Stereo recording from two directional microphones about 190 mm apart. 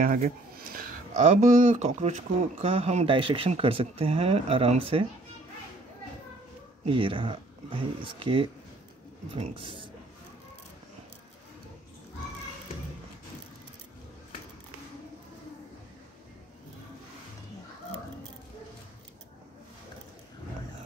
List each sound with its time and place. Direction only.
0.0 s speech: 45° right (ahead or behind); by 5.0 s 30° right (ahead or behind)
6.9 s speech: 25° right (ahead or behind)